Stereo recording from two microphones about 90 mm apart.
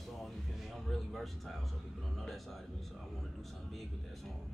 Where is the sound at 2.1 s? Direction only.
Centre (ahead or behind).